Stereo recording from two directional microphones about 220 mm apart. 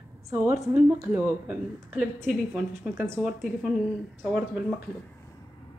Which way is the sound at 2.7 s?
10° right (ahead or behind).